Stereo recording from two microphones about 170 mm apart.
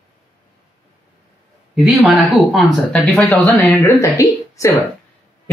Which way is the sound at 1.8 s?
5° right (ahead or behind).